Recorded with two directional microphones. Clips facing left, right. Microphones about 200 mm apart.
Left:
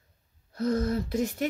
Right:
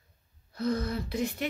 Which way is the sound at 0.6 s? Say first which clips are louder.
Left 3 dB; 45° left (ahead or behind).